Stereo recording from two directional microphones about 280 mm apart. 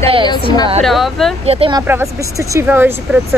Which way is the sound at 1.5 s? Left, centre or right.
Centre.